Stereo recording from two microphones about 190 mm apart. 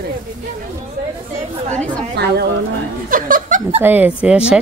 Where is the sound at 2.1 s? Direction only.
60° right (ahead or behind).